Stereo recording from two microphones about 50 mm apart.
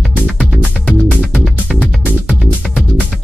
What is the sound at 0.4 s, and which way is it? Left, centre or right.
Music, centre.